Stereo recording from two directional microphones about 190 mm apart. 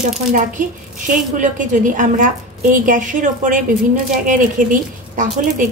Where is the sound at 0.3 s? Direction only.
45° right (ahead or behind).